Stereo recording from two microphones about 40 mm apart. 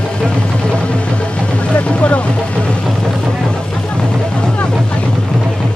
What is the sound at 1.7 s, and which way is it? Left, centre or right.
Boat, left.